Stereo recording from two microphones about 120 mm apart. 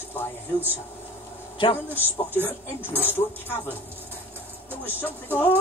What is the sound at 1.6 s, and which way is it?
Speech, 40° left (ahead or behind).